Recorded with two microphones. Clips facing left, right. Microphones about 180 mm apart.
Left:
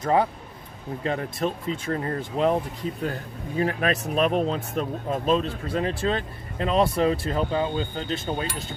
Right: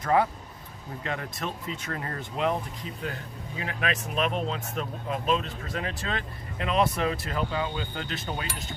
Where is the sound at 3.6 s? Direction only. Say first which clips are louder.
Left 7 dB; 40° left (ahead or behind).